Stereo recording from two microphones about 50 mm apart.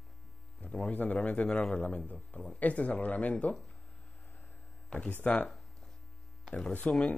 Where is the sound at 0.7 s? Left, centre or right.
Left.